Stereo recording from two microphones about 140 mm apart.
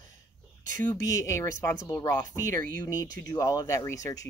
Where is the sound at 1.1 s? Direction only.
20° left (ahead or behind).